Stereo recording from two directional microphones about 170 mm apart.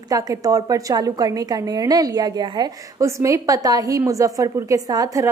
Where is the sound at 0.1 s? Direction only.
20° right (ahead or behind).